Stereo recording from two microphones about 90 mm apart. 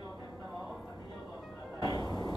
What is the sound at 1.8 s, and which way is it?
Music, 50° left (ahead or behind).